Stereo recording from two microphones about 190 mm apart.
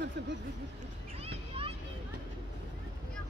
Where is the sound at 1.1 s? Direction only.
30° right (ahead or behind).